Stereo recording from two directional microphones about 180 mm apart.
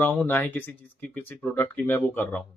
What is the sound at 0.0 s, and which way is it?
Speech, 10° left (ahead or behind).